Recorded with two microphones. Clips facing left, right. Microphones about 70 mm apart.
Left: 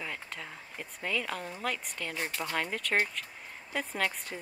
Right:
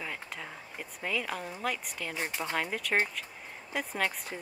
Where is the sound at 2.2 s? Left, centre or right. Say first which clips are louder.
Right 2 dB; centre.